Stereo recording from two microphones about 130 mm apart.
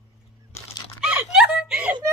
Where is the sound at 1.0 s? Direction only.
5° right (ahead or behind).